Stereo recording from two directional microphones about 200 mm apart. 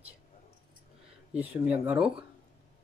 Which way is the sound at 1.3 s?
5° right (ahead or behind).